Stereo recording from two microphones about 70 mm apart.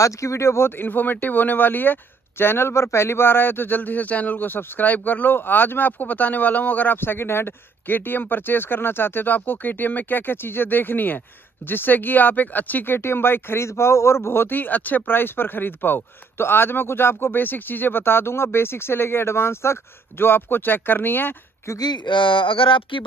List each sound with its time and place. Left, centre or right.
0.0 s speech: left
21.7 s speech: left